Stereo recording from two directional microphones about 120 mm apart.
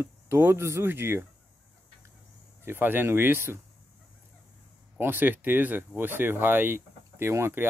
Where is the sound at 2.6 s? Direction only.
15° right (ahead or behind).